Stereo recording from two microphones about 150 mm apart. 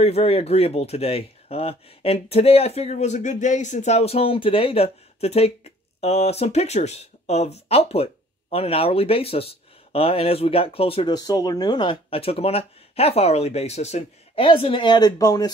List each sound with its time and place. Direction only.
0.0 s speech: 40° left (ahead or behind)
11.1 s speech: 25° left (ahead or behind)